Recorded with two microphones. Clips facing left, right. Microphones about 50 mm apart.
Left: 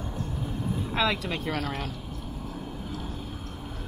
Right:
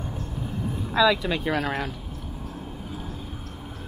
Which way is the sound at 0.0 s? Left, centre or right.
Centre.